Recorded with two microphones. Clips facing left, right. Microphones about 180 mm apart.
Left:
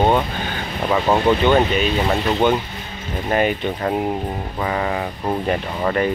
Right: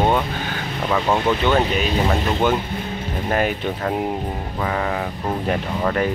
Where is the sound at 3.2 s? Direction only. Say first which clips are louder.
Left 2 dB; centre (ahead or behind).